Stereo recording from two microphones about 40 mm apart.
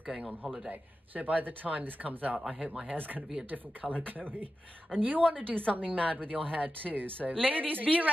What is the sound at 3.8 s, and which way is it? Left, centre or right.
A man's voice, right.